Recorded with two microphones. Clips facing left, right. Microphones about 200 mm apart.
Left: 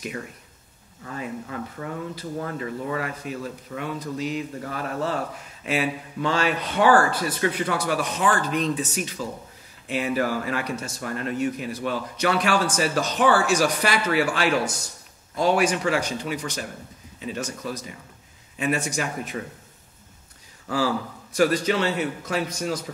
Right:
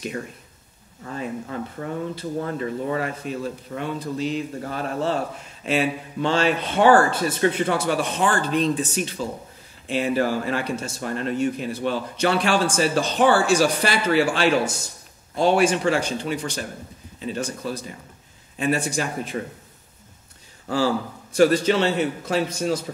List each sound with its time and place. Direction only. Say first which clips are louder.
1.0 s speech: right 3 dB; 35° right (ahead or behind)
20.6 s speech: right 2 dB; 30° right (ahead or behind)